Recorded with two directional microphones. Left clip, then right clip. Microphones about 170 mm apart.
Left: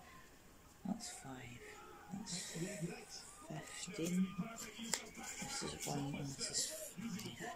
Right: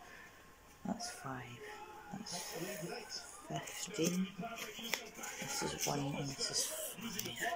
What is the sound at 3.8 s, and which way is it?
Speech, 15° left (ahead or behind).